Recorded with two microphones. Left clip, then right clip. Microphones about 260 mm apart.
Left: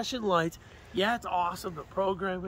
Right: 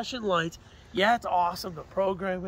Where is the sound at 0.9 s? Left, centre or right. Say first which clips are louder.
Right 5 dB; centre; by 2.4 s right.